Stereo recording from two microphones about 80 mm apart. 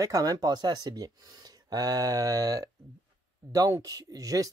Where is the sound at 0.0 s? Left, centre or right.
Right.